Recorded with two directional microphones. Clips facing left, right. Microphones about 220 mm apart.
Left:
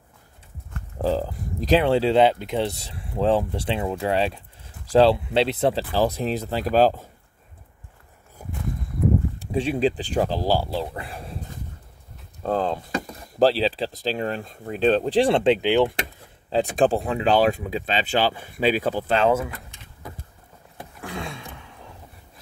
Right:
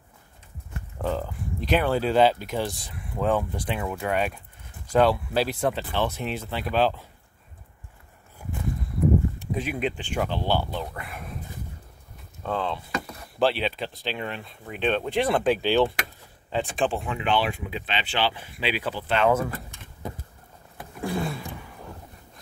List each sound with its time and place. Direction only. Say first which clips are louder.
0.9 s speech: left 5 dB; 35° left (ahead or behind)
8.4 s a sound: even; 40° left (ahead or behind)
9.4 s speech: left 6 dB; 30° left (ahead or behind)
12.4 s speech: left 5 dB; 40° left (ahead or behind); by 16.1 s 15° left (ahead or behind)
16.4 s speech: left 6 dB; 40° left (ahead or behind)
21.0 s a sound: right 5 dB; 5° right (ahead or behind)